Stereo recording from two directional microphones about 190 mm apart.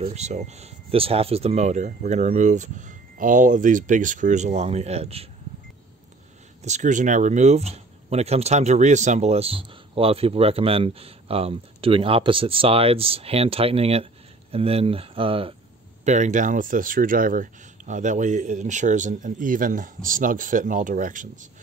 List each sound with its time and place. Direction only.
0.0 s speech: 35° right (ahead or behind)
6.6 s speech: 40° right (ahead or behind)